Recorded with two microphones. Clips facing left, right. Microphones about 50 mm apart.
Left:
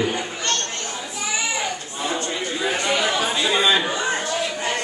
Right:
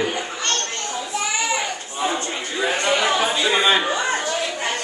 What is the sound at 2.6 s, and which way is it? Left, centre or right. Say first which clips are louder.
Chatter: right 3 dB; right.